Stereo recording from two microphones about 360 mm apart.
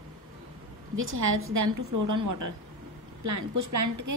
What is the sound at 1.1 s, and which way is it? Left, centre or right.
A woman's voice, right.